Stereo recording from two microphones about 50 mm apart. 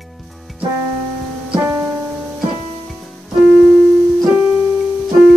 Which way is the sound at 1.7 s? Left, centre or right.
Right.